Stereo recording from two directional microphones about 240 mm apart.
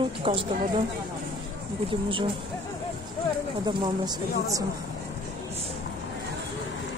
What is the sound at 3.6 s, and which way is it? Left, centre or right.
Speech, centre.